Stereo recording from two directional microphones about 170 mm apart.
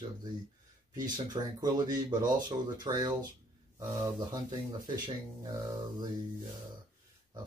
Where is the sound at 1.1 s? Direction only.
25° right (ahead or behind).